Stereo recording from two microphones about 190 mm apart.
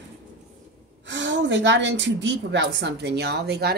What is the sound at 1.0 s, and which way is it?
A woman's voice, 70° right (ahead or behind).